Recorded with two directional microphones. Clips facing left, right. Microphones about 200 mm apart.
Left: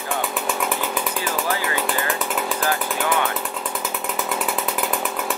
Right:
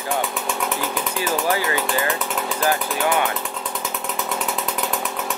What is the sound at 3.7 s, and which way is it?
Chainsaw, 5° left (ahead or behind).